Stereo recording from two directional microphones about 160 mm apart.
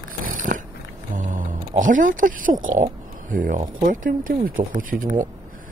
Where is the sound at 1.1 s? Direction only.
55° right (ahead or behind).